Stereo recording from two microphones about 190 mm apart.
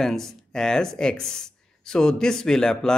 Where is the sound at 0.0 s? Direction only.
Centre (ahead or behind).